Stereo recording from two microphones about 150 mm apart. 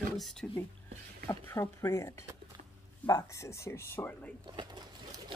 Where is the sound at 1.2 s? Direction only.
15° left (ahead or behind).